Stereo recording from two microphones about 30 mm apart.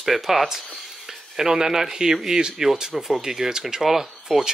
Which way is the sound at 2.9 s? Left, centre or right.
Centre.